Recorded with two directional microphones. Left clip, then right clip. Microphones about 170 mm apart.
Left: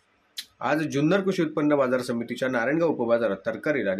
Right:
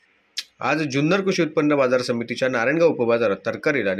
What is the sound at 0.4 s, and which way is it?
Speech, 10° right (ahead or behind).